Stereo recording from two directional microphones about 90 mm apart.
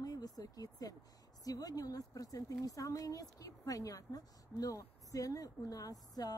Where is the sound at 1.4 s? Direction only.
45° left (ahead or behind).